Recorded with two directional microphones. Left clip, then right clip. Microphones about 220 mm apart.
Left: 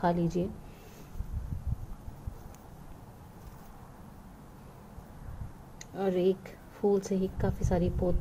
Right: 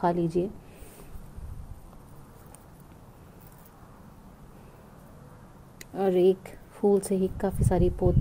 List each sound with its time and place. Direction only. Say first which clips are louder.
0.0 s speech: right 4 dB; 35° right (ahead or behind)
5.8 s speech: right 6 dB; 45° right (ahead or behind)